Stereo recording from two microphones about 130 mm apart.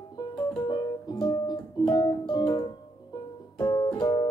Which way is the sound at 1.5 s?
35° left (ahead or behind).